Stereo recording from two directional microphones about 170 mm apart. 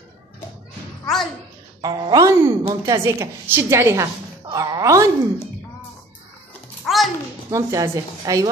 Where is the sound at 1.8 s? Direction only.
25° right (ahead or behind).